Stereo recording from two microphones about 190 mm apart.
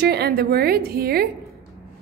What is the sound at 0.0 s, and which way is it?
A woman's voice, 55° right (ahead or behind).